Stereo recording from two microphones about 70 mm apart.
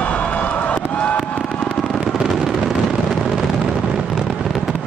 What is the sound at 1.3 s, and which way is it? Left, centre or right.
Fireworks, centre.